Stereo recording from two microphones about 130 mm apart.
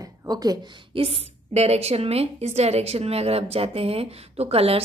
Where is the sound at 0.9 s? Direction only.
50° right (ahead or behind).